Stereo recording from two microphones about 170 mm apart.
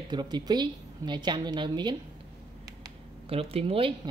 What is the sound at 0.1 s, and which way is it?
A woman's voice, 25° right (ahead or behind).